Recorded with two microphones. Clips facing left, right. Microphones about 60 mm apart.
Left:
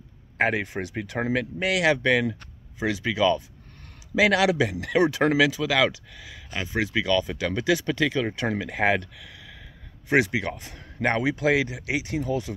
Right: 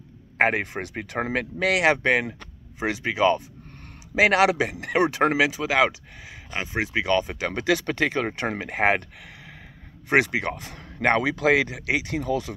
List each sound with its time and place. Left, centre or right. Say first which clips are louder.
0.4 s a man's voice: right 2 dB; right
7.5 s a man's voice: even; right